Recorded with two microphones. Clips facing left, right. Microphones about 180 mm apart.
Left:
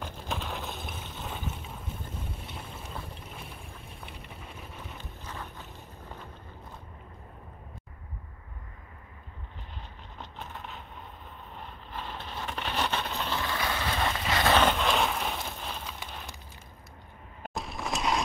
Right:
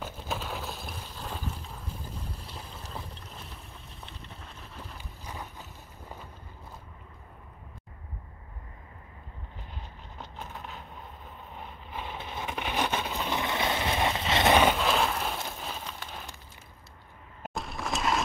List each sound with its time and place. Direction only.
0.0 s a sound: 5° right (ahead or behind)
2.4 s boat: centre (ahead or behind)
3.4 s boat: 30° right (ahead or behind)
4.6 s boat: centre (ahead or behind)
5.2 s boat: 15° right (ahead or behind)
10.4 s vehicle: centre (ahead or behind)
11.5 s a sound: 10° right (ahead or behind)
13.4 s vehicle: 20° right (ahead or behind); by 16.0 s 5° right (ahead or behind)
17.4 s a sound: centre (ahead or behind)